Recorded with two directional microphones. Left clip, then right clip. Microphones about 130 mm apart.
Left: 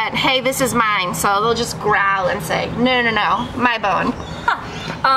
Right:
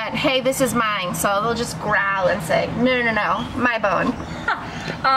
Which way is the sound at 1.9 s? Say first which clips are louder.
Left 2 dB; 35° left (ahead or behind).